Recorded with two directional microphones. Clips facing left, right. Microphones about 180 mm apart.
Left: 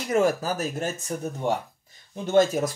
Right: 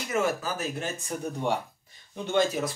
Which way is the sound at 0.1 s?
40° left (ahead or behind).